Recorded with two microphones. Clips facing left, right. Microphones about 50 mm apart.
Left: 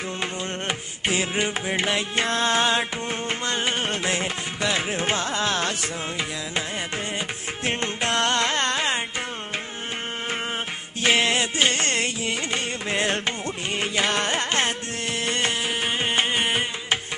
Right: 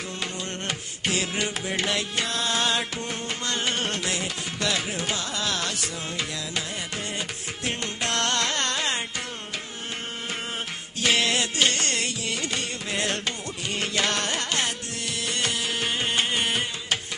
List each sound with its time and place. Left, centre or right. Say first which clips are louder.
0.2 s music: left 3 dB; left
7.6 s music: left 4 dB; left
11.0 s music: left 3 dB; left